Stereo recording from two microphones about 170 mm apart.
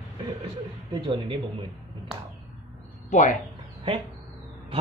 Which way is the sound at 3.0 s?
45° left (ahead or behind).